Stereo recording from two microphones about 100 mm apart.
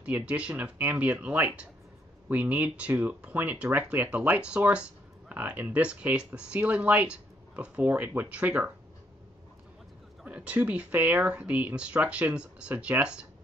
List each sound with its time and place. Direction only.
0.0 s speech: 10° right (ahead or behind)
10.2 s speech: 15° right (ahead or behind)